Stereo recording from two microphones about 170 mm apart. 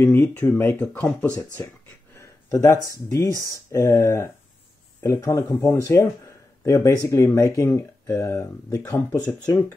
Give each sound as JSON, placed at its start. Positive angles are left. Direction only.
{"t": 0.0, "sound": "speech", "side_deg": 15}